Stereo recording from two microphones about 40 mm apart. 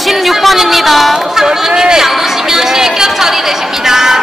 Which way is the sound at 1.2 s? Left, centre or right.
Centre.